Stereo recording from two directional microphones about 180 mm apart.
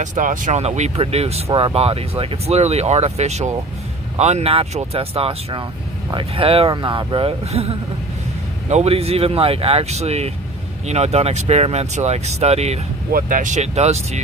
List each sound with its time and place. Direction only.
0.0 s speech: 45° right (ahead or behind)
13.1 s speech: 45° right (ahead or behind)